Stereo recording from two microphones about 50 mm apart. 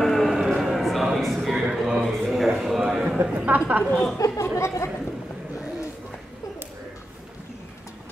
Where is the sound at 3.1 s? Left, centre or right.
Right.